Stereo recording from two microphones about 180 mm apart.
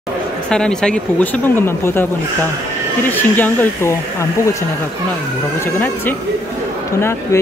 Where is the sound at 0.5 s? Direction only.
5° left (ahead or behind).